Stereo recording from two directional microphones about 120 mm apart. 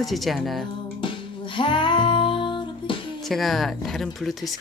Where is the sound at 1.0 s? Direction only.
45° left (ahead or behind).